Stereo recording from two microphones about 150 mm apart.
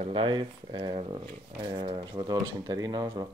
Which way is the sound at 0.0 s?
35° right (ahead or behind).